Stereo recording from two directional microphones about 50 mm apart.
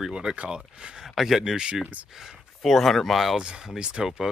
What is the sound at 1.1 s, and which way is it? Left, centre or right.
Speech, centre.